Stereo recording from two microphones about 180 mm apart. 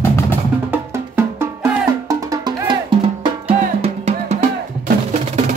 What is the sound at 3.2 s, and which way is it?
Music, 30° right (ahead or behind).